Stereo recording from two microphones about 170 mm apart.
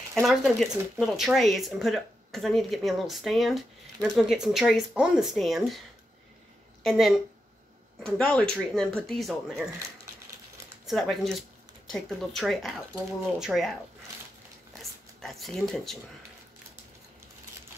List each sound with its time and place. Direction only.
0.1 s speech: centre (ahead or behind)
6.8 s speech: centre (ahead or behind)
10.9 s speech: centre (ahead or behind)
14.8 s speech: centre (ahead or behind)